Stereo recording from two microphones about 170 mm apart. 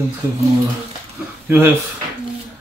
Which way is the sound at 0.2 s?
15° right (ahead or behind).